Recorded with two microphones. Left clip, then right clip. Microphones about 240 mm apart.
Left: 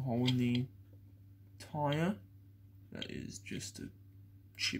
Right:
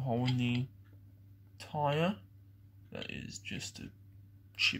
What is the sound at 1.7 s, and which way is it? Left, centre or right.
Speech, right.